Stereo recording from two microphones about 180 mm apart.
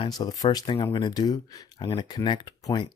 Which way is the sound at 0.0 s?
25° left (ahead or behind).